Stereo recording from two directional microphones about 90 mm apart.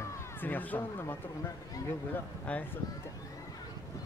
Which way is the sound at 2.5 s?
15° left (ahead or behind).